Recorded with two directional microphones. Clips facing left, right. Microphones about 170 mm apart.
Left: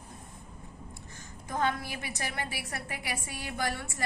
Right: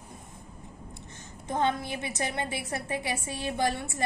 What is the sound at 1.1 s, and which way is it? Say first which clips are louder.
A woman's voice: right 3 dB; 25° right (ahead or behind).